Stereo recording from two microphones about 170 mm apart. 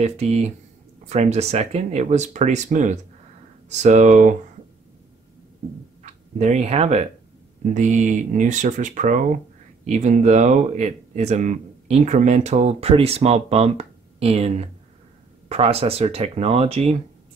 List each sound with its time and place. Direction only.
0.0 s speech: 40° right (ahead or behind)
6.3 s speech: 40° right (ahead or behind)